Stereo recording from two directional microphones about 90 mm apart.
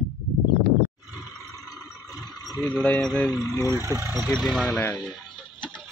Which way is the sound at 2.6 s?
15° left (ahead or behind).